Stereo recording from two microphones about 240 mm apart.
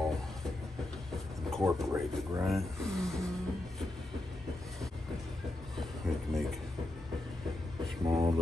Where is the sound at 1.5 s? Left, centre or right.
Centre.